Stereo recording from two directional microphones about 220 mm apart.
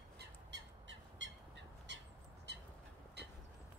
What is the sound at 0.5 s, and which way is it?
Bird, 55° right (ahead or behind).